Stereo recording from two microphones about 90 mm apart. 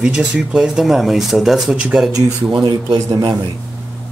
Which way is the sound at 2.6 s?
50° right (ahead or behind).